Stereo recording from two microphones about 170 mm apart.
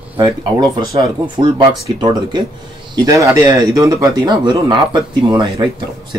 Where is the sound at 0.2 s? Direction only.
25° right (ahead or behind).